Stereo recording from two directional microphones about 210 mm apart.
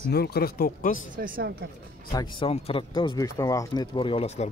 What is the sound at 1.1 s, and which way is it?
Speech, 40° right (ahead or behind).